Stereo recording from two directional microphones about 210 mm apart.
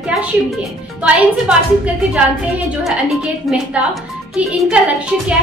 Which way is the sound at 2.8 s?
Centre (ahead or behind).